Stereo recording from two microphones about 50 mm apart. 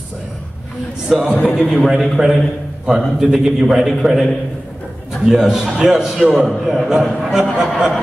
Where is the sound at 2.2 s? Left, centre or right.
Right.